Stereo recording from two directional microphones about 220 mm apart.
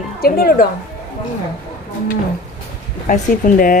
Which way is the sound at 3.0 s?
35° left (ahead or behind).